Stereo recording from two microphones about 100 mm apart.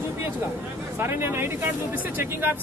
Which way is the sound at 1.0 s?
25° right (ahead or behind).